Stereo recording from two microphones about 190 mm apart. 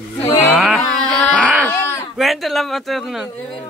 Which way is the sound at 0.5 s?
Centre (ahead or behind).